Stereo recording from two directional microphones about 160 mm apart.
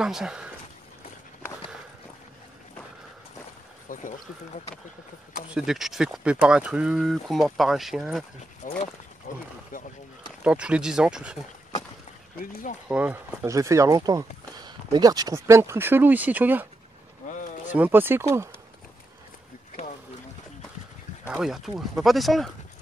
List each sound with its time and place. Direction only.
0.0 s speech: 5° right (ahead or behind)
3.9 s speech: 60° left (ahead or behind)
5.5 s speech: 5° right (ahead or behind)
8.6 s speech: 55° left (ahead or behind)
10.4 s speech: 5° right (ahead or behind)
12.4 s speech: 60° left (ahead or behind)
12.8 s speech: 10° right (ahead or behind)
17.3 s a sound: 50° left (ahead or behind)
17.7 s speech: 10° right (ahead or behind)
21.3 s speech: centre (ahead or behind)